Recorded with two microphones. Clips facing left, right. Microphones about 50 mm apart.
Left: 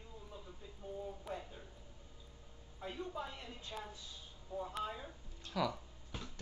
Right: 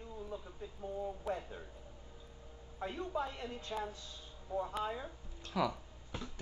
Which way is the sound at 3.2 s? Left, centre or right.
Right.